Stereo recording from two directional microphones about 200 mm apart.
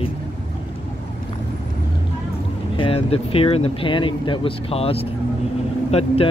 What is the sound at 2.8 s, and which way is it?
Speech, 30° left (ahead or behind).